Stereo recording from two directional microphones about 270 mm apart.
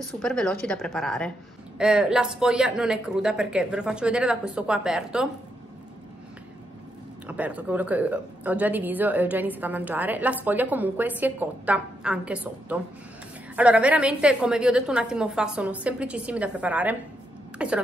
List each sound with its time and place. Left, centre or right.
0.2 s speech: centre
7.2 s speech: centre